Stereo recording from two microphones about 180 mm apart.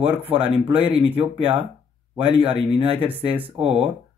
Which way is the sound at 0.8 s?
30° right (ahead or behind).